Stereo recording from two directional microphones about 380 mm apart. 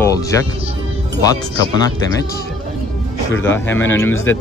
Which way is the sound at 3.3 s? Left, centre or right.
Centre.